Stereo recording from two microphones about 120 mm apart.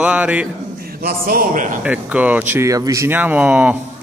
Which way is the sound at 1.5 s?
90° right.